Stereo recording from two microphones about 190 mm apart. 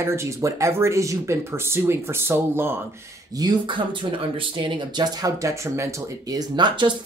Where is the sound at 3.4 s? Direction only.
25° right (ahead or behind).